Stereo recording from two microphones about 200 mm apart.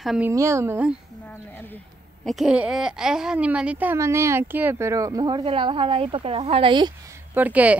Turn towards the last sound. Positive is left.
turn(degrees=-5)  # may be behind; listen again after turning